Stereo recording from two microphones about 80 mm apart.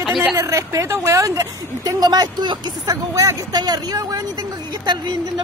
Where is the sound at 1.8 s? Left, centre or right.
Right.